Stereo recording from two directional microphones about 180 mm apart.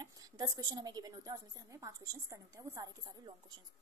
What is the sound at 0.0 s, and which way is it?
A woman's voice, 20° right (ahead or behind).